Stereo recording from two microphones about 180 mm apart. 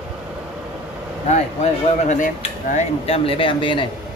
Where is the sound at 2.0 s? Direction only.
45° left (ahead or behind); by 3.8 s 30° left (ahead or behind).